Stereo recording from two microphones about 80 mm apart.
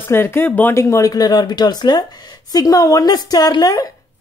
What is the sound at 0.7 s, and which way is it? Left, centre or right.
A woman's voice, left.